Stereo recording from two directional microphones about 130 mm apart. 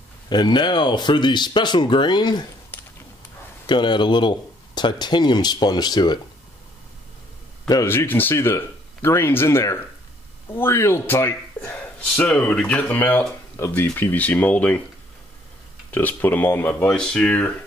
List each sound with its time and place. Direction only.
0.3 s speech: 35° left (ahead or behind)
3.6 s speech: 35° left (ahead or behind)
7.8 s speech: 20° left (ahead or behind)
15.9 s speech: 15° left (ahead or behind)